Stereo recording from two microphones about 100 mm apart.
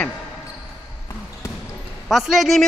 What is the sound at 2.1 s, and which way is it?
Speech, centre (ahead or behind).